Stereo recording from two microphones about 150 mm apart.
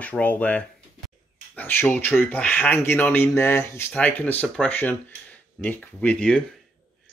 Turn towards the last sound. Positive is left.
turn(degrees=10)  # may be behind; listen again after turning